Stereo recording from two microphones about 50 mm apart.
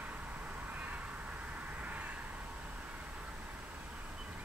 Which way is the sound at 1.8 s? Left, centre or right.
Right.